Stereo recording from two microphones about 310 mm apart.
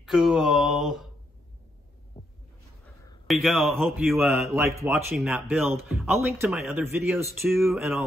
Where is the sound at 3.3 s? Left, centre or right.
Centre.